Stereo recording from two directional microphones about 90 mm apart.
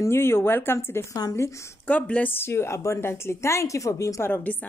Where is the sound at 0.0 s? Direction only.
30° left (ahead or behind).